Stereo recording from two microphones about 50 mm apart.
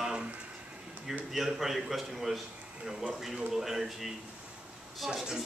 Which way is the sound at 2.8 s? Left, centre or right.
Centre.